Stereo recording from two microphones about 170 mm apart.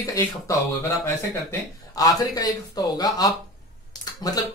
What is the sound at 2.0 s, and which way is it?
Speech, 20° left (ahead or behind).